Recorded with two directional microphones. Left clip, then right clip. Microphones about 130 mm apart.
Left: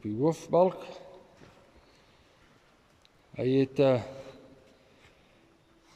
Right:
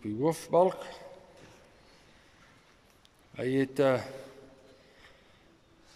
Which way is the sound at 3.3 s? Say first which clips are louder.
Left 3 dB; 20° left (ahead or behind).